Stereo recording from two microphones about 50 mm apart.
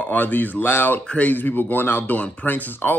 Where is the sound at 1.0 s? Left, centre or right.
Left.